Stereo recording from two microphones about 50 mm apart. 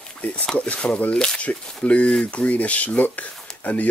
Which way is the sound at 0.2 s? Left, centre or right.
Left.